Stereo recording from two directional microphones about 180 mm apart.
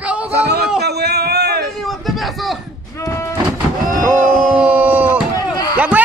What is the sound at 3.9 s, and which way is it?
Vehicle, 45° right (ahead or behind).